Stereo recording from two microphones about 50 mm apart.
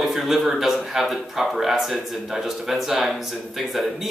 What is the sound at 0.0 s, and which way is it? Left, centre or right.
A man's voice, centre.